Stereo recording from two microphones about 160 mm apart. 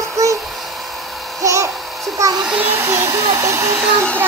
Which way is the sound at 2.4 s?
10° right (ahead or behind).